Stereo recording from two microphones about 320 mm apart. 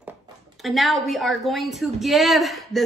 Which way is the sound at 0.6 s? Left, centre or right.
Centre.